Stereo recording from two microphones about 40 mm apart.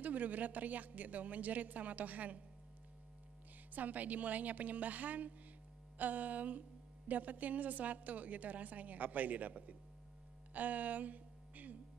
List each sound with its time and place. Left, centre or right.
0.0 s a man's voice: right
3.7 s a woman's voice: right
10.5 s music: right